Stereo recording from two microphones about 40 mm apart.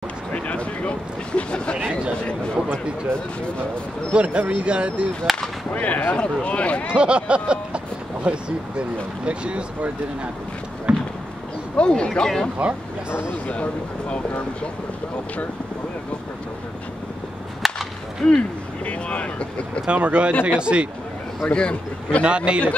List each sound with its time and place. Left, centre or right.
0.3 s speech: left
4.1 s speech: right
5.8 s speech: left
6.1 s speech: left
6.9 s speech: right
10.9 s a sound: right
11.7 s speech: left
12.5 s speech: right
13.5 s speech: left
17.6 s whip: centre
18.2 s speech: left
19.9 s speech: right
21.5 s speech: left
22.2 s speech: right